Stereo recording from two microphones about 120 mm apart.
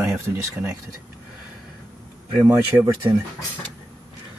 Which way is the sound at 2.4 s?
30° right (ahead or behind).